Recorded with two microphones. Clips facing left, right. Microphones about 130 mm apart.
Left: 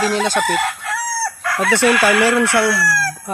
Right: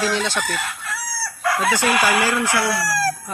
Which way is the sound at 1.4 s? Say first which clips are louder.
Left 3 dB; 15° right (ahead or behind).